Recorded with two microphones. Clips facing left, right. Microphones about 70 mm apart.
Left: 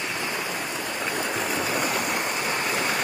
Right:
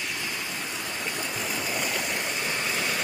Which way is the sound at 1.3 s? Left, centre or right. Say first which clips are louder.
Left 5 dB; left.